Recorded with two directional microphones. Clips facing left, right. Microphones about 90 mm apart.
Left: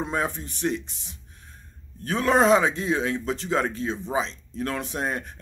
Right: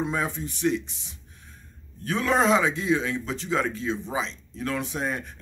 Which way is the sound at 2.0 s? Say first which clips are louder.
Left 3 dB; 45° left (ahead or behind).